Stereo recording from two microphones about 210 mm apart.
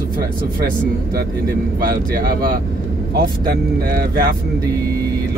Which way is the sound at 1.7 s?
45° right (ahead or behind).